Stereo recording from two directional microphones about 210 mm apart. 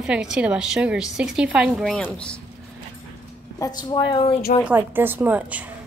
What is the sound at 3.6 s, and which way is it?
Speech, 20° left (ahead or behind).